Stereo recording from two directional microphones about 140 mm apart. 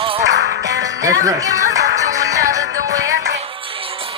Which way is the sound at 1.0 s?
25° right (ahead or behind).